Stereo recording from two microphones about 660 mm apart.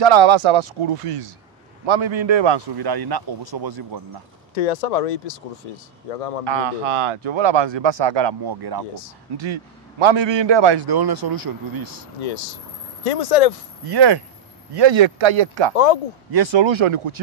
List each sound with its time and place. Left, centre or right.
0.0 s a man's voice: right
4.6 s speech: left
6.4 s a man's voice: right
13.0 s speech: left
13.8 s a man's voice: right
15.7 s speech: left
16.3 s speech: right